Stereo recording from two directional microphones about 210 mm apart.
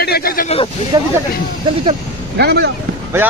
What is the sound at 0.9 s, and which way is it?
Speech, 20° right (ahead or behind).